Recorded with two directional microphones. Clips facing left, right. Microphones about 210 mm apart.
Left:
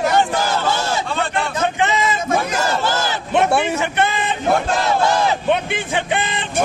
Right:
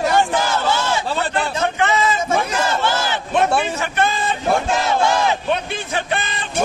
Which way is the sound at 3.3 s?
20° left (ahead or behind).